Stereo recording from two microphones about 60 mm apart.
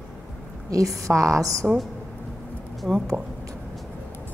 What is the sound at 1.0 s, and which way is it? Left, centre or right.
Speech, right.